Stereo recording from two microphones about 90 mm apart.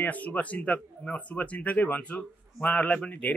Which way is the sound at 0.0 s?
15° left (ahead or behind).